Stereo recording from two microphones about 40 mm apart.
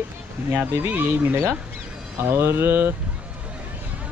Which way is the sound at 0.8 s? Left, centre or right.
Right.